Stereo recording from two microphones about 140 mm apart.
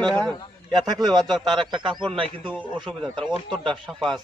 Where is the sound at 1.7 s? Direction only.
35° right (ahead or behind).